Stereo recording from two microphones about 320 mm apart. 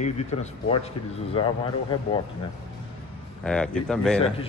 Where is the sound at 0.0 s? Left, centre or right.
Left.